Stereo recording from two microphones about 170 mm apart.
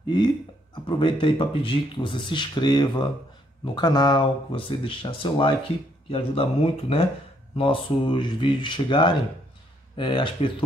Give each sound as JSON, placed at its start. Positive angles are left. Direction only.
{"t": 0.8, "sound": "speech", "side_deg": 30}